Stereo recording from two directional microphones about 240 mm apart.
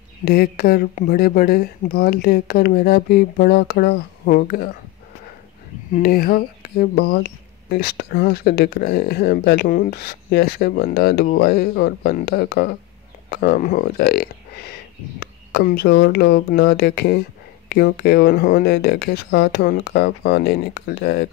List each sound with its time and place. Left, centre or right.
0.2 s speech: left
5.9 s speech: left